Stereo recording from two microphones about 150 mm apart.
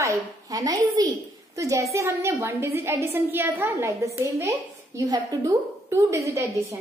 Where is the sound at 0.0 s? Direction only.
20° right (ahead or behind).